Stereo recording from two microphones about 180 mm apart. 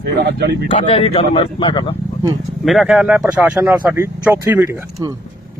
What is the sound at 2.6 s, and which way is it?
Speech, 5° right (ahead or behind).